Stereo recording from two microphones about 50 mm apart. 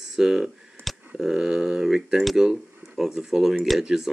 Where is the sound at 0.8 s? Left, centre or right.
Right.